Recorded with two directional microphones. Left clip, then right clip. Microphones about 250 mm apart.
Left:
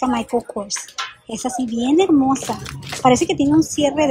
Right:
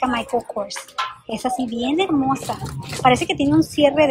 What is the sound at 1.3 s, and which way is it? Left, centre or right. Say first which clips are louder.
Speech: left 1 dB; centre.